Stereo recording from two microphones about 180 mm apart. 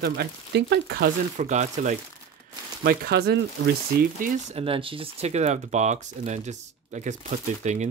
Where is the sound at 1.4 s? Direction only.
40° right (ahead or behind).